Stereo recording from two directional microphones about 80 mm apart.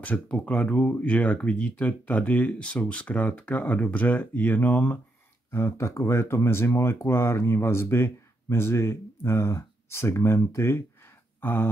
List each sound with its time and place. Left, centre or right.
0.0 s speech: centre
5.5 s speech: left